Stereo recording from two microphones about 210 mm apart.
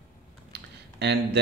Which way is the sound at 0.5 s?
55° right (ahead or behind).